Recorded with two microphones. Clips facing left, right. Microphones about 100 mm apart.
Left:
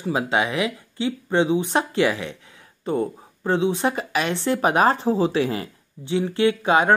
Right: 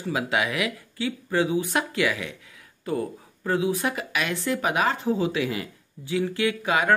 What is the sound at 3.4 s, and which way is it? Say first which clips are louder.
Speech: left 4 dB; 25° left (ahead or behind).